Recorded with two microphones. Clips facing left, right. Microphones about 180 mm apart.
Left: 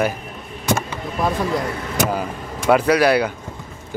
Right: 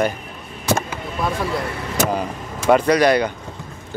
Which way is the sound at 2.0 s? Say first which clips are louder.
Right 1 dB; centre (ahead or behind).